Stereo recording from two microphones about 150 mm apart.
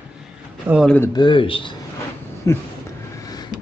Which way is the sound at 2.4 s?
20° left (ahead or behind).